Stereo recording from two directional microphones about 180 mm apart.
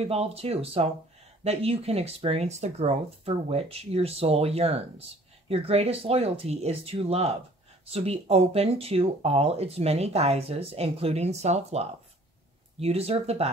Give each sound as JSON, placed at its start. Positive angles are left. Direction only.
{"t": 0.0, "sound": "speech", "side_deg": -35}
{"t": 12.8, "sound": "speech", "side_deg": -35}